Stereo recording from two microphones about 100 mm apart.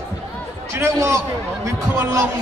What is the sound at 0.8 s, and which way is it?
Speech, 30° right (ahead or behind).